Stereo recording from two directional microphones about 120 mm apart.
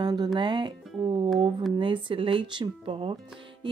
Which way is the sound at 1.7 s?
45° right (ahead or behind).